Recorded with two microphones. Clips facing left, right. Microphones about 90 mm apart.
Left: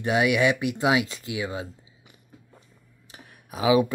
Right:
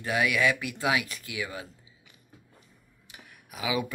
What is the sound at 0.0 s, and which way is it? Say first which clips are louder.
Speech: left 4 dB; 25° left (ahead or behind).